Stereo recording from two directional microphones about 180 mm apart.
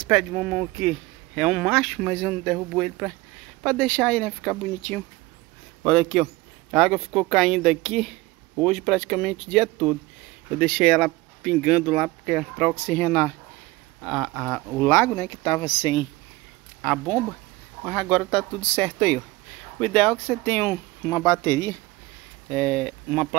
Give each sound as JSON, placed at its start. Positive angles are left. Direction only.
{"t": 0.0, "sound": "speech", "side_deg": 0}
{"t": 16.8, "sound": "speech", "side_deg": 5}
{"t": 22.5, "sound": "speech", "side_deg": 5}